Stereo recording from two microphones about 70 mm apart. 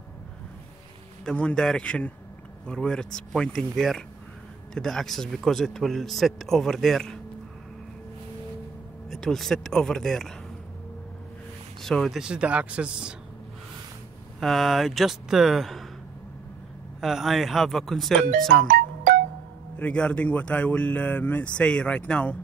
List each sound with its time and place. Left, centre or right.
1.3 s speech: centre
9.1 s speech: centre
11.8 s speech: centre
12.1 s speech: centre
14.4 s speech: centre
17.0 s speech: centre
19.8 s speech: centre